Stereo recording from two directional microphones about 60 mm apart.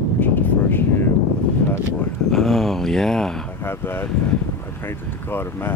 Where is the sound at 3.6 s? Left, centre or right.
Left.